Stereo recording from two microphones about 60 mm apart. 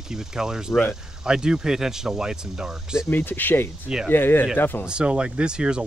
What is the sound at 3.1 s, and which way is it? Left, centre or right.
Speech, left.